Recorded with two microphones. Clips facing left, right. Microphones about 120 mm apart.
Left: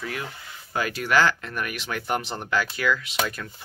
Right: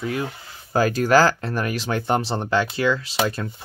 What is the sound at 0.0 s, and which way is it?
Speech, 25° right (ahead or behind).